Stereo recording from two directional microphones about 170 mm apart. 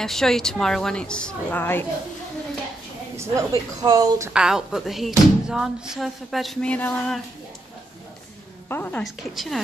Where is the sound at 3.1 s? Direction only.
15° right (ahead or behind).